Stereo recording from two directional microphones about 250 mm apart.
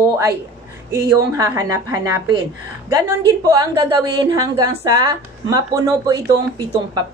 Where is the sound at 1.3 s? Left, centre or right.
Centre.